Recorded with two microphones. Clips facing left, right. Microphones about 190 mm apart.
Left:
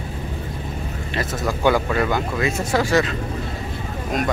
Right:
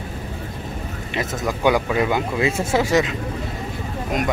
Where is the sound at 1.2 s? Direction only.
15° right (ahead or behind).